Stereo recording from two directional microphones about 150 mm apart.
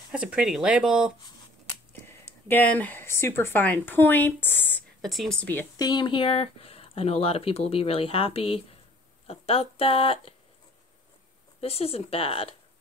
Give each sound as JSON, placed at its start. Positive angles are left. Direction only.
{"t": 0.1, "sound": "speech", "side_deg": -5}
{"t": 1.9, "sound": "speech", "side_deg": 15}
{"t": 5.0, "sound": "speech", "side_deg": 0}
{"t": 5.8, "sound": "speech", "side_deg": 30}
{"t": 11.6, "sound": "speech", "side_deg": 40}